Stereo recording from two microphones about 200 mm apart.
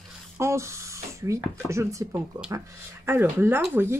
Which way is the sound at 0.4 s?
15° right (ahead or behind).